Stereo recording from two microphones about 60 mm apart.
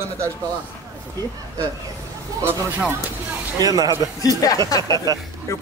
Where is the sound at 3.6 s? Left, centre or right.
Right.